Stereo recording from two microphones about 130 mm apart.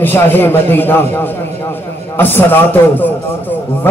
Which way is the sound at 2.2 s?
15° left (ahead or behind).